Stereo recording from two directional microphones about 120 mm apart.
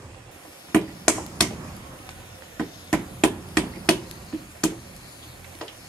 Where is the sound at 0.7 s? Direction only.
5° left (ahead or behind).